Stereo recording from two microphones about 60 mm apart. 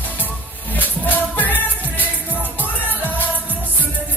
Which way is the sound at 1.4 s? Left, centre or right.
Left.